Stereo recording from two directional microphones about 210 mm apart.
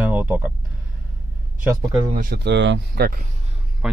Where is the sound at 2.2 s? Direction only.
50° right (ahead or behind).